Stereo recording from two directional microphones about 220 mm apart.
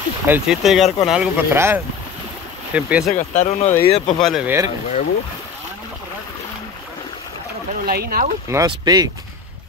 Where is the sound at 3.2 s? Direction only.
30° left (ahead or behind).